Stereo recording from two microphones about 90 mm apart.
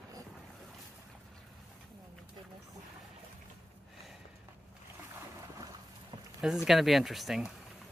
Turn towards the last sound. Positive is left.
turn(degrees=0)  # may be behind; listen again after turning